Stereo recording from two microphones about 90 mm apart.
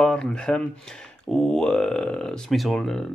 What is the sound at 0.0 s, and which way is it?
Speech, 10° left (ahead or behind).